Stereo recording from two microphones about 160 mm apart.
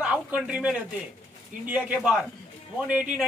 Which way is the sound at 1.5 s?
55° right (ahead or behind).